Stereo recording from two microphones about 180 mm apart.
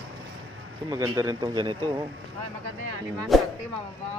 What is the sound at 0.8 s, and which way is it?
Speech, 20° right (ahead or behind).